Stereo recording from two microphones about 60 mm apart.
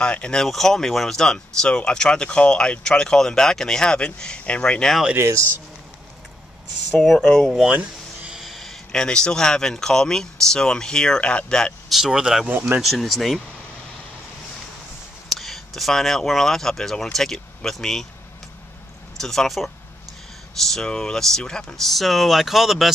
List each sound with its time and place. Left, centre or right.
0.0 s speech: centre
0.5 s speech: centre
6.9 s speech: centre
7.7 s a sound: right
8.4 s speech: centre
11.9 s speech: centre
12.8 s speech: centre
15.3 s speech: centre
19.1 s speech: centre